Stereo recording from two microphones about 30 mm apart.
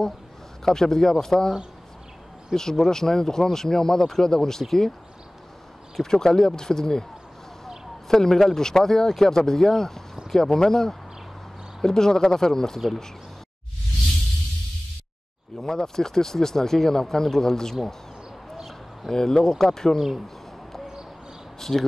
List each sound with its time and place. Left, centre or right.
0.7 s speech: centre
2.5 s speech: centre
6.0 s speech: left
8.1 s speech: centre
15.6 s speech: centre
19.0 s speech: centre
20.0 s speech: centre
21.5 s speech: centre